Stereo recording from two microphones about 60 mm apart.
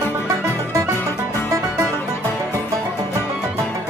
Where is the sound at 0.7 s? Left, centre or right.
Right.